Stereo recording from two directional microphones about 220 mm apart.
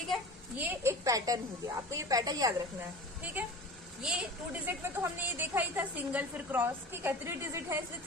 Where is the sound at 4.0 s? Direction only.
5° right (ahead or behind).